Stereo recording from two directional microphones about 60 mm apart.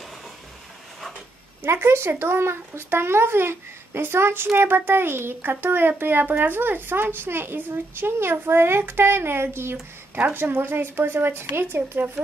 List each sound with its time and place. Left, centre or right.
1.6 s speech: right